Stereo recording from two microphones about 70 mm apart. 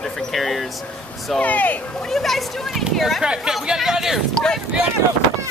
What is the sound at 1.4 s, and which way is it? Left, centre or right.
Speech, left.